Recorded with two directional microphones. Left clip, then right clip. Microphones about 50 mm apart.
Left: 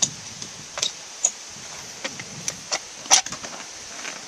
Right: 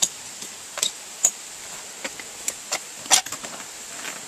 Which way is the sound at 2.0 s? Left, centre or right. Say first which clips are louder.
Left 1 dB; centre.